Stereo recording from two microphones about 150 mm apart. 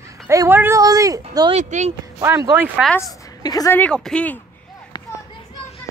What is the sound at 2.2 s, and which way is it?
Speech, 15° right (ahead or behind).